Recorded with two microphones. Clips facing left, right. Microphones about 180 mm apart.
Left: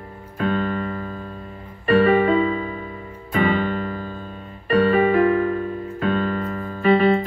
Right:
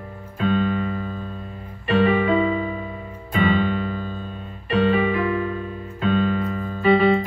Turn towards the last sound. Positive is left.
turn(degrees=45)  # may be behind; listen again after turning